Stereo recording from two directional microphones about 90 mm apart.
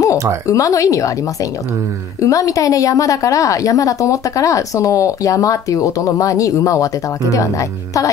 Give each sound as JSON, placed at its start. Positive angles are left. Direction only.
{"t": 0.5, "sound": "a woman's voice", "side_deg": 40}